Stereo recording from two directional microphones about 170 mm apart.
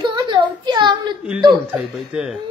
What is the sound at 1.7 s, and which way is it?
Speech, 5° right (ahead or behind).